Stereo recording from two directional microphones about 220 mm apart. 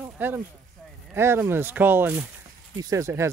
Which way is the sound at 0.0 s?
10° right (ahead or behind).